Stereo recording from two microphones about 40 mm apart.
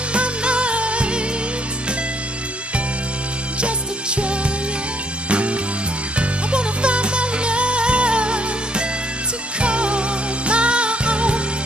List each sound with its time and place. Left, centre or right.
0.1 s music: right
3.6 s music: right